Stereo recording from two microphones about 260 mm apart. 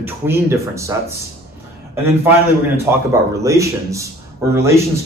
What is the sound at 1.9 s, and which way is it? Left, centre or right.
A man's voice, centre.